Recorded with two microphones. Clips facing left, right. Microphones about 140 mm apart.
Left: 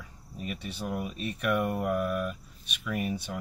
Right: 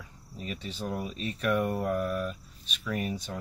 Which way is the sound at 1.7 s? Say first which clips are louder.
Even; 10° left (ahead or behind).